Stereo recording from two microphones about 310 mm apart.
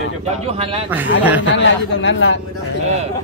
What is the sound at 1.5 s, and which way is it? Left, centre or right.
Speech, left.